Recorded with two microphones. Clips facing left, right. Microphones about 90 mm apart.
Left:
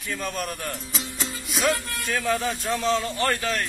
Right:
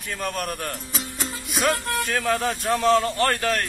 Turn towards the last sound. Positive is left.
turn(degrees=-55)  # may be behind; listen again after turning